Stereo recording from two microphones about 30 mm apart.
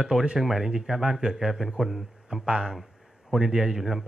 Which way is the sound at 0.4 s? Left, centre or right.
Centre.